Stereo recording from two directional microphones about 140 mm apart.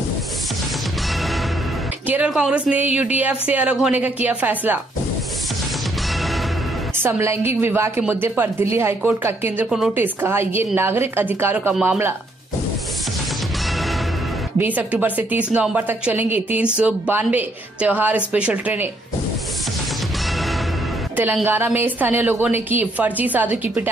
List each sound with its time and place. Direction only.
2.0 s a woman's voice: 10° right (ahead or behind)
7.0 s a woman's voice: 20° right (ahead or behind)
9.7 s a woman's voice: 5° right (ahead or behind)
9.9 s a woman's voice: 15° right (ahead or behind)
14.6 s a woman's voice: 10° right (ahead or behind)
21.5 s a woman's voice: 15° right (ahead or behind)